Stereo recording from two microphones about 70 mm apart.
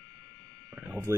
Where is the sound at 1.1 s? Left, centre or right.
Right.